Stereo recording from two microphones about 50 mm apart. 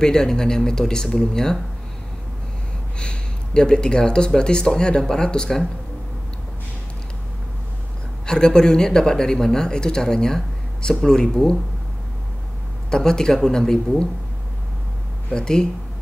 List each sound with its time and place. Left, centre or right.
0.0 s speech: centre
3.0 s speech: centre
8.3 s speech: centre
12.9 s speech: centre
15.2 s speech: centre